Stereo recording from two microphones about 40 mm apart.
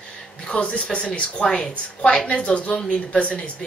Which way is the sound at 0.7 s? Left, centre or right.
Left.